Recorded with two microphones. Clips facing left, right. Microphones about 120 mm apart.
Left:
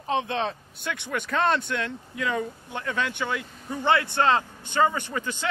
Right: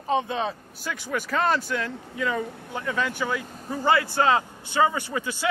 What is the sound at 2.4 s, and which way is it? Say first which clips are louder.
Speech: even; 75° right (ahead or behind).